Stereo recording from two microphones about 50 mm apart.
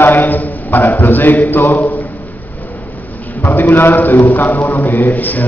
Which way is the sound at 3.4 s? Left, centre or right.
Left.